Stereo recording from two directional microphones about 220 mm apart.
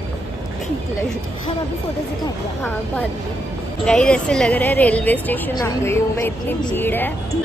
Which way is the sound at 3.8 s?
5° left (ahead or behind).